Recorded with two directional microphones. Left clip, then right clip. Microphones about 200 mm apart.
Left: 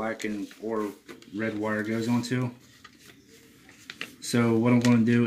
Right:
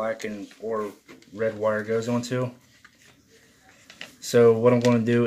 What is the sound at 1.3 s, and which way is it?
Speech, 40° right (ahead or behind).